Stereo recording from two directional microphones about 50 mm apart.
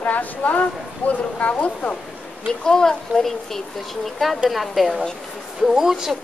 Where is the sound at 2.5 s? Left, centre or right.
Centre.